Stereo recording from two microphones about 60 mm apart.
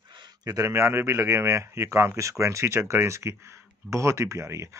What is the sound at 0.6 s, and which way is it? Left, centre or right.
Speech, right.